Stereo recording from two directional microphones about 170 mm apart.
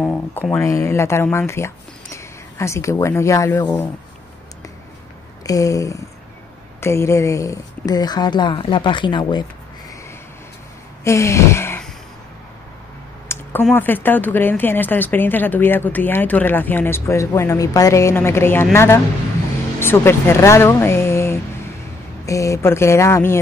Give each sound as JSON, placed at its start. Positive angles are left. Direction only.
{"t": 0.0, "sound": "speech", "side_deg": 10}
{"t": 5.4, "sound": "speech", "side_deg": 20}
{"t": 11.1, "sound": "a sound", "side_deg": 15}
{"t": 13.3, "sound": "speech", "side_deg": 10}